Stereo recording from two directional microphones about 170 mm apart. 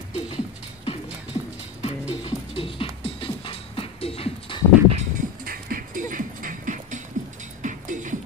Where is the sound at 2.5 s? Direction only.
30° left (ahead or behind).